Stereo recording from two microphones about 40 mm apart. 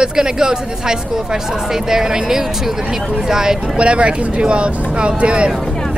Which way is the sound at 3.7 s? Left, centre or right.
Right.